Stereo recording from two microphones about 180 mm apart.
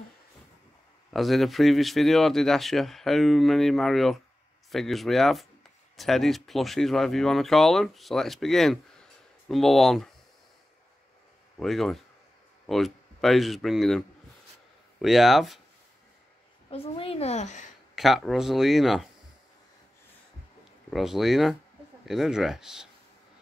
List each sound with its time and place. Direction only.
1.1 s speech: centre (ahead or behind)
11.6 s speech: centre (ahead or behind)
16.7 s a woman's voice: 30° left (ahead or behind)
17.9 s speech: centre (ahead or behind)
20.9 s speech: centre (ahead or behind)